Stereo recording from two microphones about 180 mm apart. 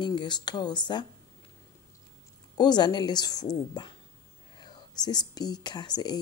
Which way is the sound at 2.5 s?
25° left (ahead or behind).